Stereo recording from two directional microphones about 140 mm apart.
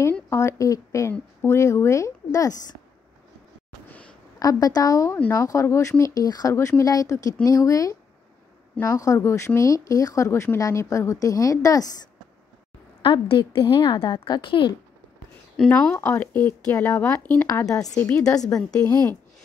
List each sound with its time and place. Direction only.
0.3 s speech: 20° left (ahead or behind)
3.9 s a sound: 10° left (ahead or behind)
4.4 s speech: 25° left (ahead or behind)
13.0 s a woman's voice: 35° left (ahead or behind)
15.5 s a woman's voice: 5° left (ahead or behind)
17.6 s speech: 25° left (ahead or behind)
18.0 s a woman's voice: 10° left (ahead or behind)